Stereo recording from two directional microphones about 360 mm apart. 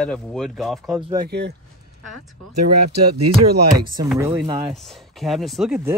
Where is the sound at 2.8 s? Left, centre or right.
Right.